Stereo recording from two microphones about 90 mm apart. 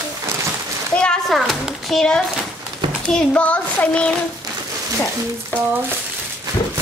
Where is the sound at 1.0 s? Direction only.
5° left (ahead or behind).